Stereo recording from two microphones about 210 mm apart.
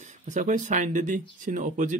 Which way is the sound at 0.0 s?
35° right (ahead or behind).